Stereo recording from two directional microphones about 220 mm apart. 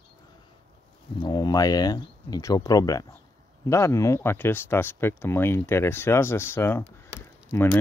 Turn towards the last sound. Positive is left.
turn(degrees=10)  # may be behind; listen again after turning